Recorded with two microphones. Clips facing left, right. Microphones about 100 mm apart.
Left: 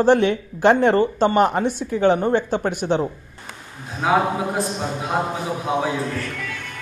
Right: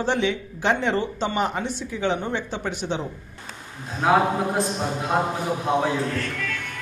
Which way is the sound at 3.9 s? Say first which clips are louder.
Even; centre (ahead or behind).